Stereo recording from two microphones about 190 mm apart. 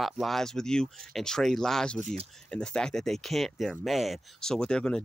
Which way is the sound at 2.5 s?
5° left (ahead or behind).